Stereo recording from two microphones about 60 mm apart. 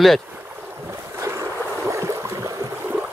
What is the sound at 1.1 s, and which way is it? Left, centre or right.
Boat, right.